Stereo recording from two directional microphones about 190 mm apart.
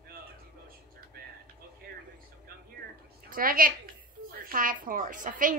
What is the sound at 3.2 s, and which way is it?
A woman's voice, 50° right (ahead or behind).